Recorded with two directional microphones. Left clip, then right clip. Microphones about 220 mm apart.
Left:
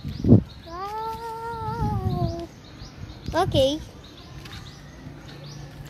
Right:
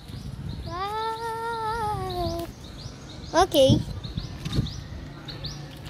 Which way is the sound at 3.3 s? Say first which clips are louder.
Right 2 dB; 10° right (ahead or behind).